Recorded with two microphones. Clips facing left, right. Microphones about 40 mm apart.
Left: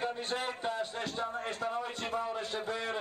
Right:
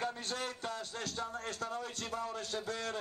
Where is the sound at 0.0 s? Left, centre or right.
Left.